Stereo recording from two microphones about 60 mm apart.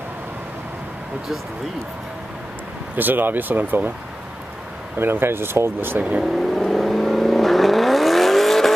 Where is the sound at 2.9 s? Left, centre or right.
Right.